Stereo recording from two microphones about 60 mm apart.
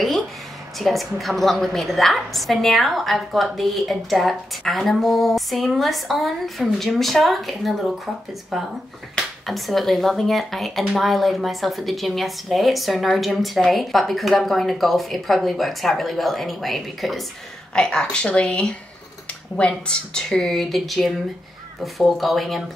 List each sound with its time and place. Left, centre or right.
0.7 s a woman's voice: centre
17.7 s a woman's voice: centre